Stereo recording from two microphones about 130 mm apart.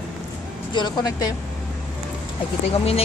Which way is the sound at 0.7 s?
30° left (ahead or behind).